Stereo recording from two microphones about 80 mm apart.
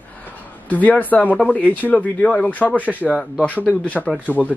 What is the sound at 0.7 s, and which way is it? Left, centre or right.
Speech, centre.